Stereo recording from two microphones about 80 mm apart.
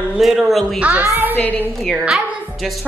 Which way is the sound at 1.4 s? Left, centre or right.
Left.